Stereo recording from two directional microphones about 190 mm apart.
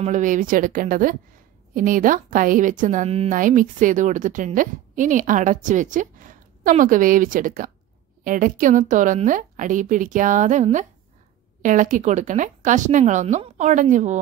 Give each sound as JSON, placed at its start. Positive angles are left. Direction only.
{"t": 0.0, "sound": "a woman's voice", "side_deg": -40}